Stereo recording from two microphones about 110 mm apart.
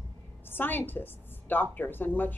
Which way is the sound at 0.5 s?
20° left (ahead or behind).